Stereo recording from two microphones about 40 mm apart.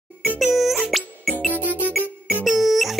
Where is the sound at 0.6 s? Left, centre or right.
Centre.